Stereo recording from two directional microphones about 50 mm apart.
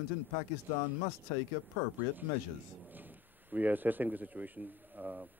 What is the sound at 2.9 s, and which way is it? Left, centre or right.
Speech, right.